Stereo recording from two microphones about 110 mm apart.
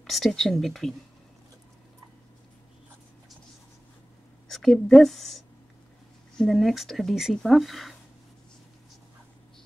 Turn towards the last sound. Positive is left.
turn(degrees=0)  # may be behind; listen again after turning